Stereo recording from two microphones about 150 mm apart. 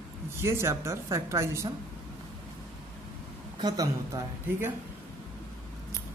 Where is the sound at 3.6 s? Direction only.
25° right (ahead or behind).